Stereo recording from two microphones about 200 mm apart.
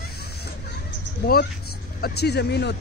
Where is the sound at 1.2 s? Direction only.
50° left (ahead or behind).